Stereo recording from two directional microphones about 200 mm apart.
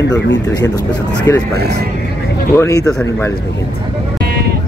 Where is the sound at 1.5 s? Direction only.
50° right (ahead or behind).